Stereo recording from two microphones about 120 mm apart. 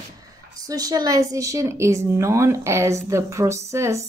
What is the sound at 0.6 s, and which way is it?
A woman's voice, 30° right (ahead or behind).